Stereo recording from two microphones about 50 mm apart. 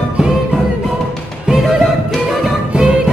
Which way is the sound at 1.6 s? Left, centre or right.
Centre.